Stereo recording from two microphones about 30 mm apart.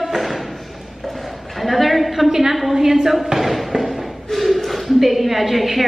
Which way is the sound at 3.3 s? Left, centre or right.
Centre.